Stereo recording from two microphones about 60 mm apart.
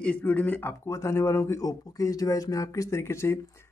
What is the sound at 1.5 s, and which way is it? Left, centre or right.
Speech, left.